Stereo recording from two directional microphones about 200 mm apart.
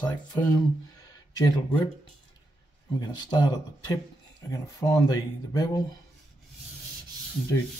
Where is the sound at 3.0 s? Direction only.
20° left (ahead or behind).